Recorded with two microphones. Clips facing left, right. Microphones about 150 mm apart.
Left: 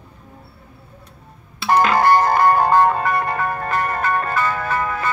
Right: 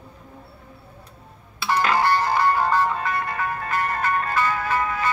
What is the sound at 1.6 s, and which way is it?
Music, 50° left (ahead or behind).